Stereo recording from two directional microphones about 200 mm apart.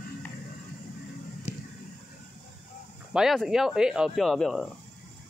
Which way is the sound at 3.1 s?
Centre (ahead or behind).